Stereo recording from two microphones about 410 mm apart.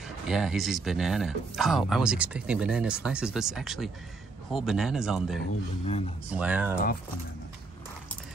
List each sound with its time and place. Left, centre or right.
0.3 s speech: centre
5.9 s speech: centre
6.3 s speech: centre